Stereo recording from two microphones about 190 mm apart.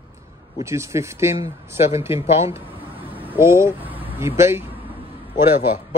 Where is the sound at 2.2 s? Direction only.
35° left (ahead or behind).